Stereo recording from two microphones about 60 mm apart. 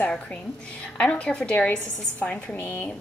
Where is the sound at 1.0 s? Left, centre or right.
Centre.